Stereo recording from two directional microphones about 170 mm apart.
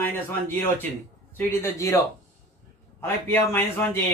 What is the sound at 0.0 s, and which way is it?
A man's voice, 10° left (ahead or behind).